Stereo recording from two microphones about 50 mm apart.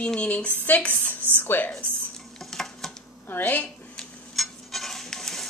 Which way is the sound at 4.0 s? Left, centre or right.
Centre.